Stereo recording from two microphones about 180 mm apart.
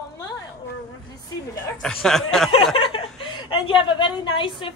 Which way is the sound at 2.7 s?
30° left (ahead or behind).